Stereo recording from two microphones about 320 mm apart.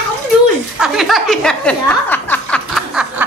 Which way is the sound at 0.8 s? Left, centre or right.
Centre.